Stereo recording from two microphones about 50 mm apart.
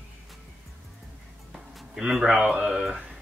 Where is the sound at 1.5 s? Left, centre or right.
Centre.